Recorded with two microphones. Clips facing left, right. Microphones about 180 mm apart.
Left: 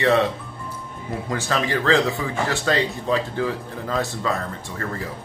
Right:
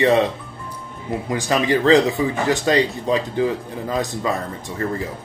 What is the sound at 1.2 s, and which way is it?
Speech, 15° right (ahead or behind).